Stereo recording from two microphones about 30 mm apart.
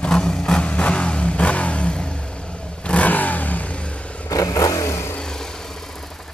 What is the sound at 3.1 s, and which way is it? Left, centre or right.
Vehicle, left.